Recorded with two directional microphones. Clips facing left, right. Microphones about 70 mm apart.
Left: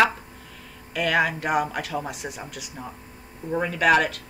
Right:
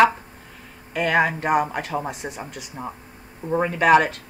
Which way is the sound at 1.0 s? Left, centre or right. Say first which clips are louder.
Right 3 dB; right.